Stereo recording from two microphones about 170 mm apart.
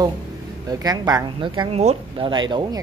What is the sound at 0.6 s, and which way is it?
A woman's voice, 20° right (ahead or behind).